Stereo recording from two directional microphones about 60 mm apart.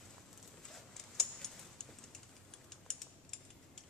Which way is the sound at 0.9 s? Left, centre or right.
Centre.